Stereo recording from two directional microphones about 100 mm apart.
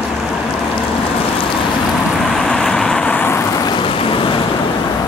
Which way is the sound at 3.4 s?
35° left (ahead or behind).